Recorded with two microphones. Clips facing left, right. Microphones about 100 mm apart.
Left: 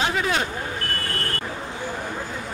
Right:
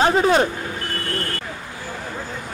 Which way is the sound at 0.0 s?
35° right (ahead or behind).